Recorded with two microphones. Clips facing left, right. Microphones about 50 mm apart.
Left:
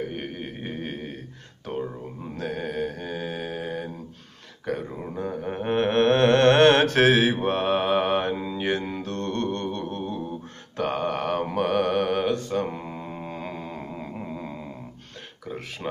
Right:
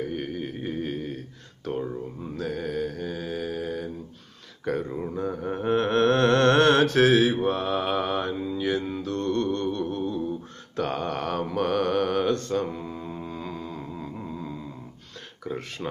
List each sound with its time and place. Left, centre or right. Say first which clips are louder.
0.1 s music: right 2 dB; left
0.6 s a sound: right 3 dB; left
2.3 s mantra: even; left
5.0 s mantra: right 1 dB; left
10.8 s a sound: left 2 dB; centre
11.5 s mantra: even; centre
12.6 s mantra: left 1 dB; left
15.8 s speech: left 2 dB; centre